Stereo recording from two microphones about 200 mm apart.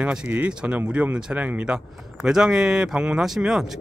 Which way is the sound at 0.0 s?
5° right (ahead or behind).